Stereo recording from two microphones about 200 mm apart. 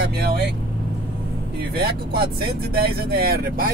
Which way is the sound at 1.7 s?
50° right (ahead or behind).